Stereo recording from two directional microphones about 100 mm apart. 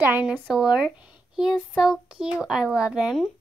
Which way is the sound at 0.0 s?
20° right (ahead or behind).